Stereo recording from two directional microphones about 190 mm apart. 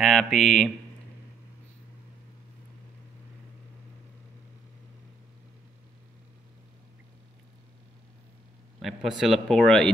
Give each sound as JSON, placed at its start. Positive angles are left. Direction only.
{"t": 0.0, "sound": "speech", "side_deg": 0}
{"t": 9.2, "sound": "speech", "side_deg": 0}